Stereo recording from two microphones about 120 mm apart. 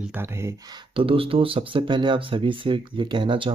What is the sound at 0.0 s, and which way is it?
Speech, 15° right (ahead or behind).